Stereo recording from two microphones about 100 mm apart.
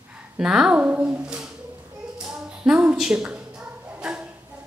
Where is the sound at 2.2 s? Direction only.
5° right (ahead or behind).